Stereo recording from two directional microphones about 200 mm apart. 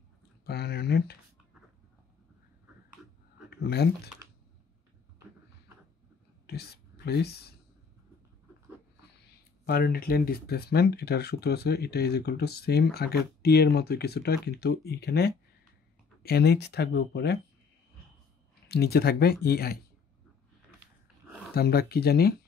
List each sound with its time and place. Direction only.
0.5 s speech: 55° left (ahead or behind)
3.4 s speech: 55° left (ahead or behind)
6.4 s whispering: 50° left (ahead or behind)
9.7 s speech: 50° left (ahead or behind)
18.7 s speech: 50° left (ahead or behind)
21.5 s speech: 50° left (ahead or behind)